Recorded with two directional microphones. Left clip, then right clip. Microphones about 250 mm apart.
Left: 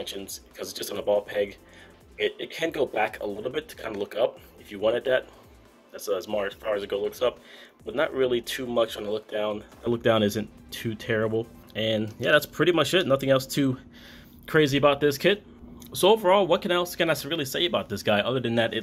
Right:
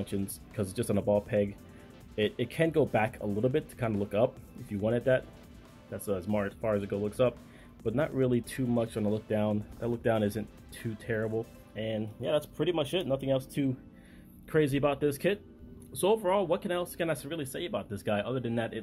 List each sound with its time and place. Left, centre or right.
0.0 s speech: centre